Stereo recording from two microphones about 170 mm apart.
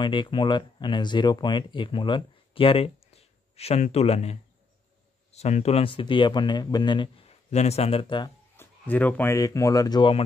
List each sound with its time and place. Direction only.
0.0 s speech: 30° left (ahead or behind)
7.5 s speech: 40° left (ahead or behind)
8.5 s speech: 10° left (ahead or behind); by 10.2 s 25° left (ahead or behind)